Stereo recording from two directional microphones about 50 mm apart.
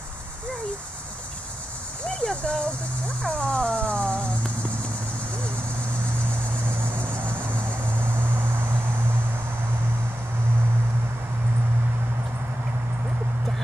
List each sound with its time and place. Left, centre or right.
2.0 s speech: centre
3.2 s music: left
7.2 s vehicle: right